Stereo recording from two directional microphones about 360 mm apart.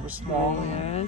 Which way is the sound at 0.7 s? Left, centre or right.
Centre.